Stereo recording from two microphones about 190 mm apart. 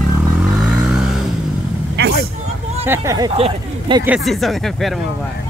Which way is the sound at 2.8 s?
15° right (ahead or behind).